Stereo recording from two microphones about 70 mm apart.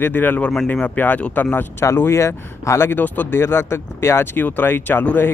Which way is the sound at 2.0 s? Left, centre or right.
Left.